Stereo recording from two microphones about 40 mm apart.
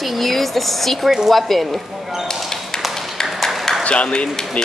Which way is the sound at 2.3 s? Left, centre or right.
Centre.